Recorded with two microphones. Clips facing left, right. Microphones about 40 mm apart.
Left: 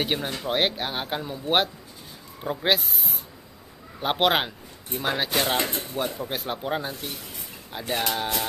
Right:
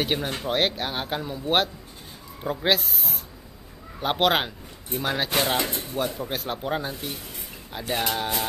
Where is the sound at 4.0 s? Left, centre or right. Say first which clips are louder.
Even; centre.